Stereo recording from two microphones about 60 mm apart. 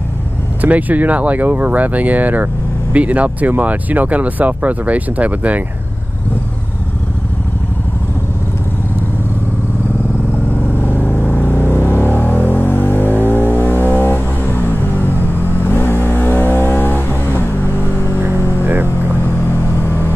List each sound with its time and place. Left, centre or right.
0.6 s speech: right
10.8 s music: left
18.6 s music: right
19.2 s vehicle: left